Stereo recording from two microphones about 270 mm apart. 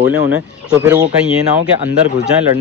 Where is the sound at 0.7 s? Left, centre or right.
Centre.